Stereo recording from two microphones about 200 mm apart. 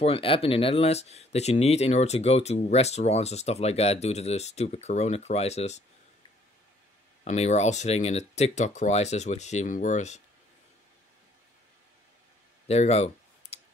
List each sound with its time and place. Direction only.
0.0 s speech: 30° left (ahead or behind)
7.2 s speech: 35° left (ahead or behind)
12.6 s a sound: 30° left (ahead or behind)